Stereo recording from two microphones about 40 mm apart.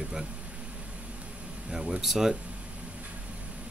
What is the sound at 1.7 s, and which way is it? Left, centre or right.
Speech, centre.